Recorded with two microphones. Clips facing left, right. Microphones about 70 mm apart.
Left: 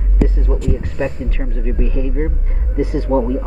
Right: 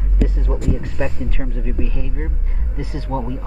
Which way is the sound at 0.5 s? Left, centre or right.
Centre.